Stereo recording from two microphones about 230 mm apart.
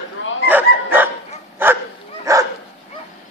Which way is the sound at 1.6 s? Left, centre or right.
Centre.